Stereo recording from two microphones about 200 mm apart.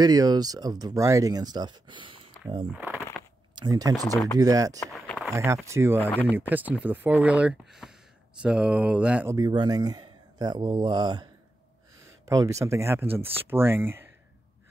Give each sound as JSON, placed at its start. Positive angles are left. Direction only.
{"t": 0.0, "sound": "speech", "side_deg": -20}
{"t": 2.7, "sound": "speech", "side_deg": -10}
{"t": 4.9, "sound": "a sound", "side_deg": 0}
{"t": 5.3, "sound": "speech", "side_deg": -15}
{"t": 6.0, "sound": "speech", "side_deg": 10}
{"t": 6.5, "sound": "speech", "side_deg": -10}